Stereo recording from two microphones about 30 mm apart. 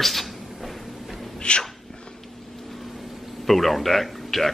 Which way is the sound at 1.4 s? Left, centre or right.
Left.